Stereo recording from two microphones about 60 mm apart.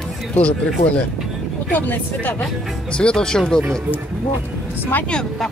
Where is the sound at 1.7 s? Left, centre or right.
Left.